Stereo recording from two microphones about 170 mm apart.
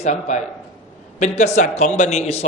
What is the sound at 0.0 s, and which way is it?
A woman's voice, 45° left (ahead or behind).